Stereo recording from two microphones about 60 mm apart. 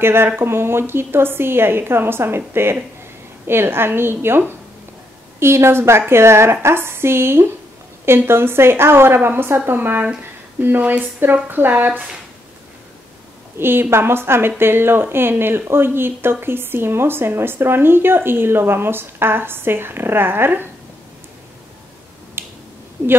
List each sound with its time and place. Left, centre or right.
0.0 s a woman's voice: right
13.6 s speech: right
22.4 s finger snapping: right